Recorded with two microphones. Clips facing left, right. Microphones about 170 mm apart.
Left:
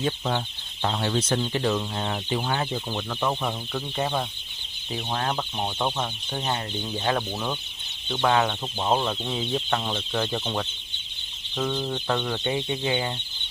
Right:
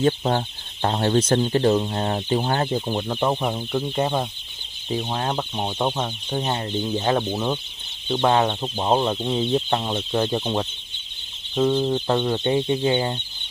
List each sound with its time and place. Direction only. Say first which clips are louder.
0.0 s speech: right 6 dB; 45° right (ahead or behind)
2.9 s speech: right 5 dB; 25° right (ahead or behind)
12.4 s speech: right 6 dB; 35° right (ahead or behind)